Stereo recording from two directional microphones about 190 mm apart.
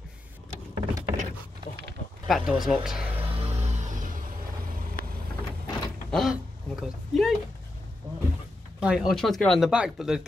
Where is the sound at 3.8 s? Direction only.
40° right (ahead or behind).